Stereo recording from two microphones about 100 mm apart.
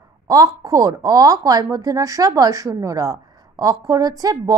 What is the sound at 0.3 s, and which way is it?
A woman's voice, 40° right (ahead or behind).